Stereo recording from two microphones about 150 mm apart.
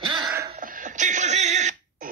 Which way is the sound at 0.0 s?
30° right (ahead or behind).